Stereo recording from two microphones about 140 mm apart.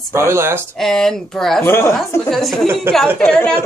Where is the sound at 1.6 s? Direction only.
20° left (ahead or behind).